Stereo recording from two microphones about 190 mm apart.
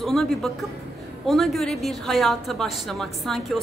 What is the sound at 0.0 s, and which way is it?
Speech, centre (ahead or behind).